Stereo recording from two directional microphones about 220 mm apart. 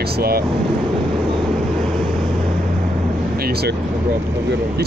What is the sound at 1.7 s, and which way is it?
Vehicle, centre (ahead or behind).